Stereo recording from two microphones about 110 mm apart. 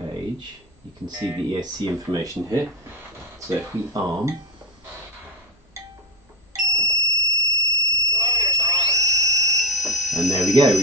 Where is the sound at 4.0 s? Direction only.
35° right (ahead or behind).